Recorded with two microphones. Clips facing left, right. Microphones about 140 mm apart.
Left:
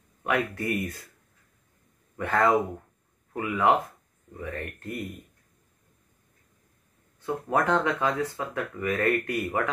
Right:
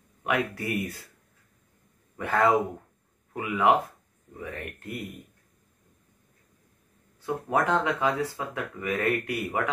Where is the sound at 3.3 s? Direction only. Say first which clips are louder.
Even; 15° right (ahead or behind).